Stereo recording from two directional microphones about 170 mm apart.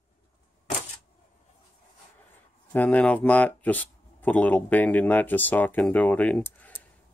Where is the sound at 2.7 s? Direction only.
10° left (ahead or behind).